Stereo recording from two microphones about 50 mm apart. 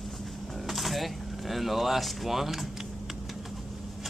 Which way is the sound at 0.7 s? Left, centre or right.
Centre.